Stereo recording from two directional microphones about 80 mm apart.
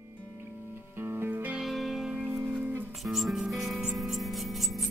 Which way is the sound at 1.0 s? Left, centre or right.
Right.